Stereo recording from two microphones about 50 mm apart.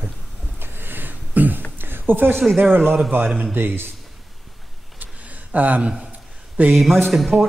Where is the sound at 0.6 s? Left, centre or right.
Right.